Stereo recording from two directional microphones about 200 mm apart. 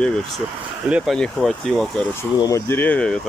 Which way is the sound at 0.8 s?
5° right (ahead or behind).